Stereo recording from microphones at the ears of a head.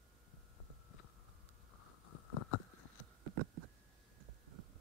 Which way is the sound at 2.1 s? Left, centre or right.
Left.